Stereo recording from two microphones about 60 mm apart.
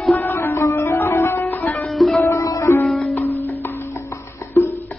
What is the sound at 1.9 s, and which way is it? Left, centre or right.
Music, centre.